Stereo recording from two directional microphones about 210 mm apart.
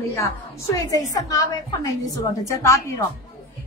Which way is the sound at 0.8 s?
15° left (ahead or behind).